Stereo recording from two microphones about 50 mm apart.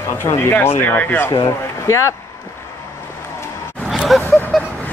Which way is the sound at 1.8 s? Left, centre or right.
Left.